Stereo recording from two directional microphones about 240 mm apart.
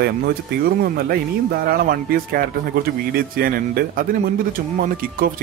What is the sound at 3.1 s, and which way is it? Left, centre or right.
Speech, right.